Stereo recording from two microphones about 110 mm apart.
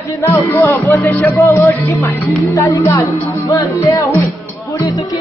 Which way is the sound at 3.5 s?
30° left (ahead or behind).